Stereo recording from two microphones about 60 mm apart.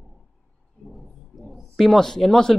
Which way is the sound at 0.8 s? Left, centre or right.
Centre.